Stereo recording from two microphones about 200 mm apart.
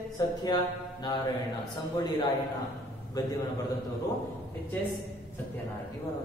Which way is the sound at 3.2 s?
20° left (ahead or behind).